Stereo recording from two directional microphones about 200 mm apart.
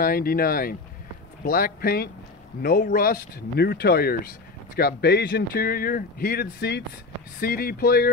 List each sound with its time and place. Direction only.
0.0 s speech: 50° left (ahead or behind)